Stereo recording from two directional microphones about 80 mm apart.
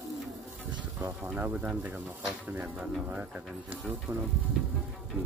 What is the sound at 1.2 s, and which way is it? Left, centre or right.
Speech, right.